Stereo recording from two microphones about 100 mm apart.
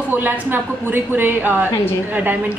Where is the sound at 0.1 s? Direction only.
20° right (ahead or behind).